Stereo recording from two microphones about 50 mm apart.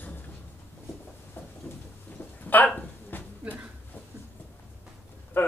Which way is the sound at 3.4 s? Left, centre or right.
Right.